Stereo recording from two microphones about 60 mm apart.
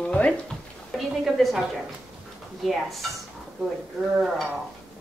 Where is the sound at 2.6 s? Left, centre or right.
Centre.